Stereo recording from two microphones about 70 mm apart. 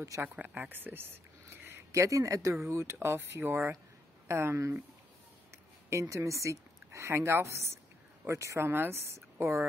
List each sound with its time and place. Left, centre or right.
0.2 s speech: right
5.9 s a woman's voice: right